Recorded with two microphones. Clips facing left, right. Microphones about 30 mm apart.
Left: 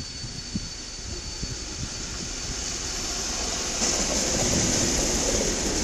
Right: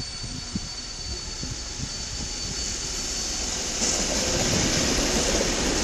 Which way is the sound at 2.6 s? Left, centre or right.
Centre.